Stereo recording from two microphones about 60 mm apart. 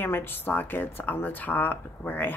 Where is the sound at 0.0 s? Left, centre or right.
Left.